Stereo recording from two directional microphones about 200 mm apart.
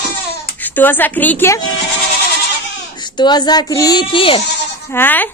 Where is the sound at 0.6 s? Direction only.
10° left (ahead or behind).